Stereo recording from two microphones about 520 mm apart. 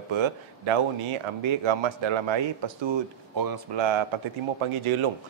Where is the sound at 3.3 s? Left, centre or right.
Right.